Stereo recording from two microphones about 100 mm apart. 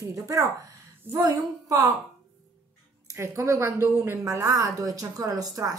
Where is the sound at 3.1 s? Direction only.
30° right (ahead or behind).